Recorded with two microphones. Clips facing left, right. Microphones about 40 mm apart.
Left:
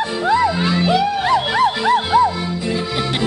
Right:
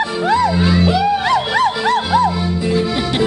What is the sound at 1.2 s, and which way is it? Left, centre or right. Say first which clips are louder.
Music: right 1 dB; right.